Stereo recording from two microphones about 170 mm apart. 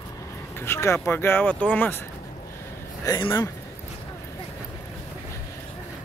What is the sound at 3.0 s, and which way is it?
Speech, 20° left (ahead or behind).